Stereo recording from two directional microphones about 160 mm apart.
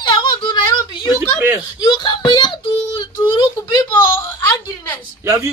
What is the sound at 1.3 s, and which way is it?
Speech, 15° right (ahead or behind).